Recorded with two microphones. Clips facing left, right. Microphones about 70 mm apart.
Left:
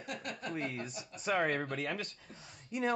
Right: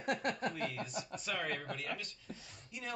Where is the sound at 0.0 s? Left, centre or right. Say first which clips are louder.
Right 6 dB; right.